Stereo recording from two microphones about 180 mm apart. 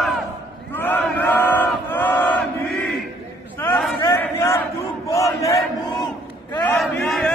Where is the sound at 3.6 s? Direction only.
15° left (ahead or behind).